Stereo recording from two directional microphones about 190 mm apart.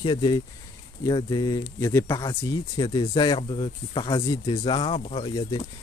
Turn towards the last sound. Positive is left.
turn(degrees=25)  # may be behind; listen again after turning